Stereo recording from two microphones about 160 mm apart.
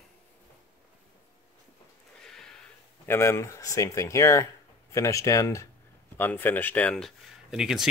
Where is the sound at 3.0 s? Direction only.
15° left (ahead or behind); by 7.8 s 5° right (ahead or behind).